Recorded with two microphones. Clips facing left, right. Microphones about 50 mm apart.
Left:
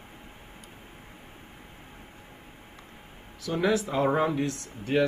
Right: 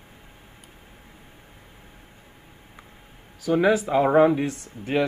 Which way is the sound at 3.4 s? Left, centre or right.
Centre.